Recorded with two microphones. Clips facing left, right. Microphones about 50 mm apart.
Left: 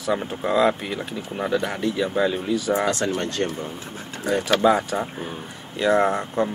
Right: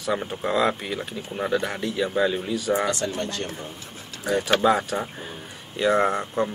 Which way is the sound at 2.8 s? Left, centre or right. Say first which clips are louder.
Left 3 dB; left.